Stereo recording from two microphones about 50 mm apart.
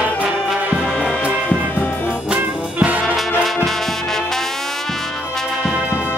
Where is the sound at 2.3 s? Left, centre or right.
Right.